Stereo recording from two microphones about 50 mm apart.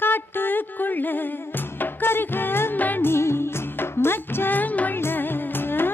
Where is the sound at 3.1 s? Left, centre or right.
Left.